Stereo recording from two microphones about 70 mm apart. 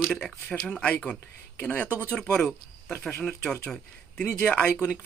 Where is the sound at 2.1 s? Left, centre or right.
Centre.